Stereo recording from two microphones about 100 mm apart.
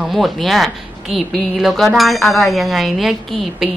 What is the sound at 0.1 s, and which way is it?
A man's voice, centre (ahead or behind).